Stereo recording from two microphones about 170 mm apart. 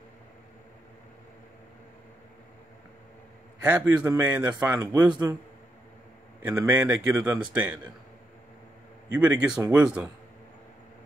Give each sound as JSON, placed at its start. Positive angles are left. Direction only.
{"t": 3.6, "sound": "speech", "side_deg": -10}
{"t": 5.1, "sound": "a man's voice", "side_deg": -25}
{"t": 6.4, "sound": "speech", "side_deg": -10}
{"t": 9.1, "sound": "speech", "side_deg": -10}